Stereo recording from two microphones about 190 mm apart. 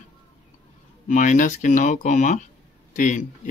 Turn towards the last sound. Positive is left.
turn(degrees=40)  # may be behind; listen again after turning